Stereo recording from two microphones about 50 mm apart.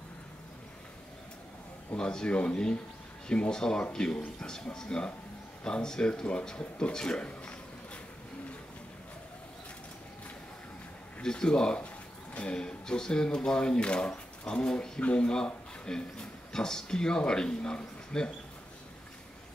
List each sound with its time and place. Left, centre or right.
2.0 s speech: centre
11.2 s speech: centre